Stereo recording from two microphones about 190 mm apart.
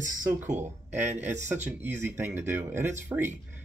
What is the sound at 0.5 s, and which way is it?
Speech, 10° right (ahead or behind).